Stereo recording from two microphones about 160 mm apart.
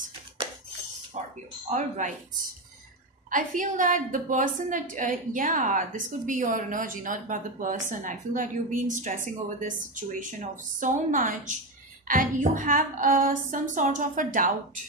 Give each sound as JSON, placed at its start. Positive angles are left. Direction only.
{"t": 1.1, "sound": "a sound", "side_deg": -45}
{"t": 1.7, "sound": "speech", "side_deg": -50}
{"t": 3.3, "sound": "a woman's voice", "side_deg": -55}